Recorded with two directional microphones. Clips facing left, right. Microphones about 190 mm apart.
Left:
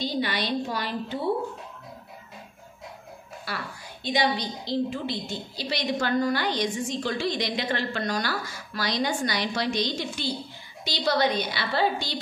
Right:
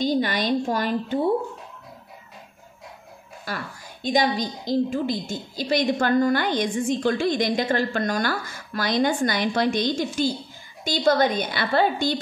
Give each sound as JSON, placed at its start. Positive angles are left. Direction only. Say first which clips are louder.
{"t": 0.0, "sound": "a woman's voice", "louder": "right 5 dB", "side_deg": -45}
{"t": 3.5, "sound": "a woman's voice", "louder": "right 3 dB", "side_deg": -45}